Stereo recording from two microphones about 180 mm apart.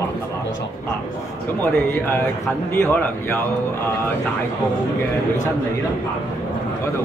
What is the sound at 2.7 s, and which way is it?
Speech, 15° left (ahead or behind).